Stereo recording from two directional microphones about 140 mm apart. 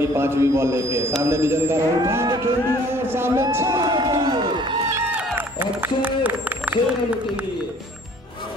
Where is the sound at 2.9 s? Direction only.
15° right (ahead or behind).